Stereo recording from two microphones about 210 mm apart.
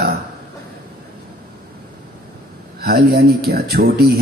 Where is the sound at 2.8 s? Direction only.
45° right (ahead or behind).